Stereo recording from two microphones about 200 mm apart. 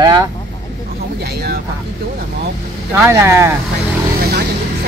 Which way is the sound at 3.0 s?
15° right (ahead or behind).